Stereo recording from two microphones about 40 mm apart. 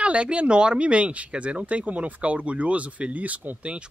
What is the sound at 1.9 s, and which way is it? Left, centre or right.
Speech, right.